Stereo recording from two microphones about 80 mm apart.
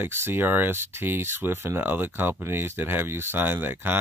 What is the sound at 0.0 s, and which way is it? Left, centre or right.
Speech, right.